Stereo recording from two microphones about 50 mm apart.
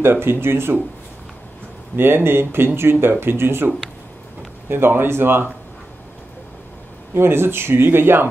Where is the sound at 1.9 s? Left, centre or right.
Right.